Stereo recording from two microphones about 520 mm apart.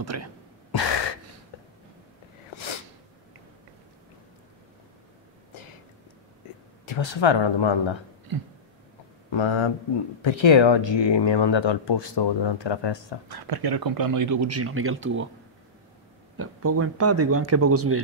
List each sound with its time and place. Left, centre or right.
0.1 s speech: right
0.7 s gasp: left
6.9 s speech: left
8.3 s speech: right
9.3 s speech: left
13.3 s speech: right
16.3 s speech: right